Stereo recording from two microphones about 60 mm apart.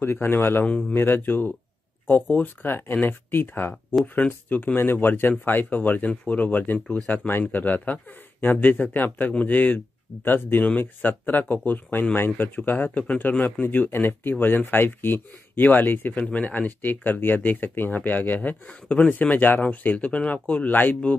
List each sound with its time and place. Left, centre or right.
0.0 s speech: left
0.7 s speech: centre
0.9 s speech: left